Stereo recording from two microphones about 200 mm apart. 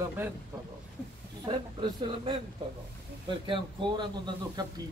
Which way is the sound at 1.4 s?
25° right (ahead or behind).